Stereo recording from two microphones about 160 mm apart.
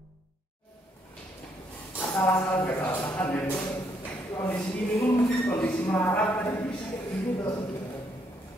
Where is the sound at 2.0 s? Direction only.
20° left (ahead or behind).